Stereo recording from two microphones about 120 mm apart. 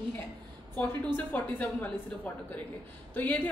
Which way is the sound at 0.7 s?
15° left (ahead or behind).